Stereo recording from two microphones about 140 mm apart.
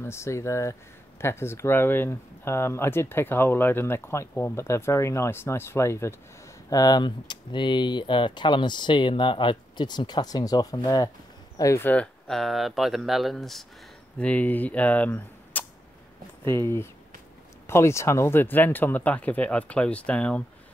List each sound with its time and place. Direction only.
0.0 s speech: 20° left (ahead or behind)